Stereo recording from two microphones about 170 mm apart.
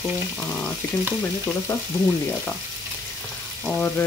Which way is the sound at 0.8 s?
10° left (ahead or behind).